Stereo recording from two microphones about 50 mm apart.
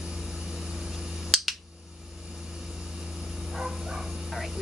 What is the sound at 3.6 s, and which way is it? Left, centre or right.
Bow-wow, centre.